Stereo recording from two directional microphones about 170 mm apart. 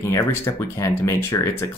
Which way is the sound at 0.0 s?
15° left (ahead or behind).